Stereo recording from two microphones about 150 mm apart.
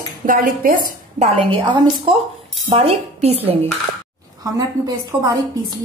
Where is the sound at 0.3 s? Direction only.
65° right (ahead or behind).